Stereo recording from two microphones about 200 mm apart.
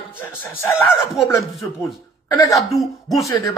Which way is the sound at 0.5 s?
10° left (ahead or behind).